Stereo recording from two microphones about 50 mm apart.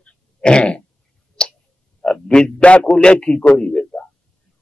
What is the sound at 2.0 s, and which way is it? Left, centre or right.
A man's voice, centre.